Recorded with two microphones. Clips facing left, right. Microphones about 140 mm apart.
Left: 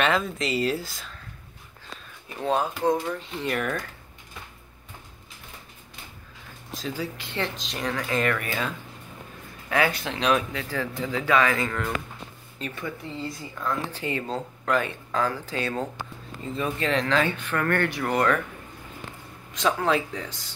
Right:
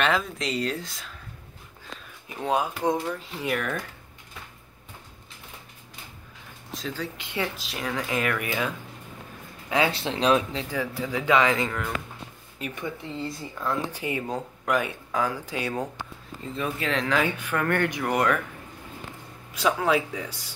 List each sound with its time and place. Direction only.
0.0 s speech: centre (ahead or behind)
2.2 s speech: 15° right (ahead or behind)
3.1 s speech: 5° right (ahead or behind)
6.7 s a sound: centre (ahead or behind)
7.2 s speech: 10° right (ahead or behind)
9.7 s speech: 25° right (ahead or behind)
10.8 s speech: 10° right (ahead or behind)
13.8 s speech: 10° right (ahead or behind)
16.4 s speech: centre (ahead or behind)
19.5 s speech: 5° right (ahead or behind)